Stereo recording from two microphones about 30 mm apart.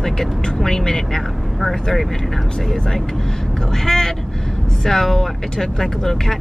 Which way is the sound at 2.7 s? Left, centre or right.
Left.